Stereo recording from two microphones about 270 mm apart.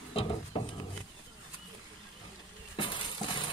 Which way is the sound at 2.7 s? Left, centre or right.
Centre.